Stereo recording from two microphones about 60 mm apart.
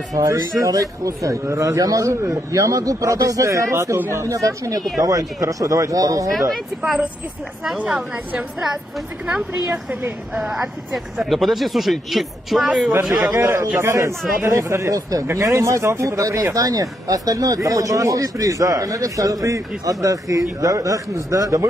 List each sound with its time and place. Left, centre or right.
0.1 s a man's voice: right
11.1 s speech: centre
13.3 s a man's voice: right
15.2 s a man's voice: right
16.5 s speech: right